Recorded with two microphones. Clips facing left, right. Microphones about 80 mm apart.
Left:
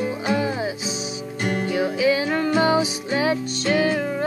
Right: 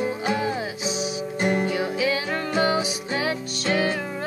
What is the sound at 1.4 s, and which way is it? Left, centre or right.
Music, right.